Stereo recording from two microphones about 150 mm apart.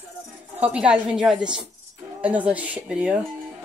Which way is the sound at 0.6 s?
10° right (ahead or behind).